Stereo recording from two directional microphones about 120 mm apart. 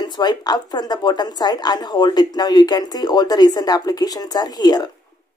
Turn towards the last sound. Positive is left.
turn(degrees=35)  # may be behind; listen again after turning